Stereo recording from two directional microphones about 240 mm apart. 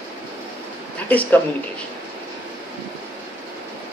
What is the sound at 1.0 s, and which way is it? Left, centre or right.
Speech, centre.